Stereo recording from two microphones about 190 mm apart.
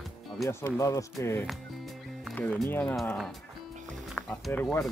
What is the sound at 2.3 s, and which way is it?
Speech, 5° left (ahead or behind).